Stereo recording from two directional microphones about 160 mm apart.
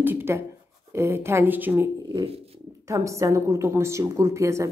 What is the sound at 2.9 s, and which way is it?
A woman's voice, 20° right (ahead or behind).